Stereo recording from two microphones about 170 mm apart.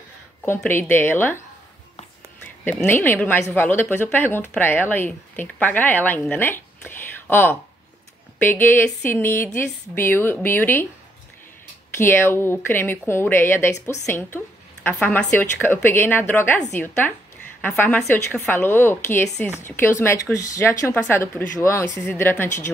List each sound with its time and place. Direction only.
0.7 s speech: 15° left (ahead or behind)
2.6 s speech: 10° left (ahead or behind)
12.0 s a woman's voice: 15° left (ahead or behind)